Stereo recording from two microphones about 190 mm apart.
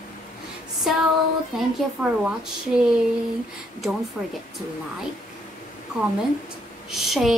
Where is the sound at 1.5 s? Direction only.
Centre (ahead or behind).